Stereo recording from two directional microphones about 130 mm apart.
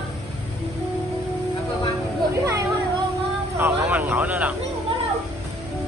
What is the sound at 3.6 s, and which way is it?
Vehicle, 15° right (ahead or behind).